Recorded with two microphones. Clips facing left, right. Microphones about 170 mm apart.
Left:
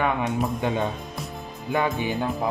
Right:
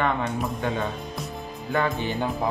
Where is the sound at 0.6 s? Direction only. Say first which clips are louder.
Left 2 dB; 20° left (ahead or behind).